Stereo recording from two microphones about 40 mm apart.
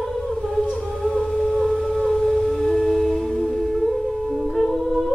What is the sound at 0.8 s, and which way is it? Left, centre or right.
Music, centre.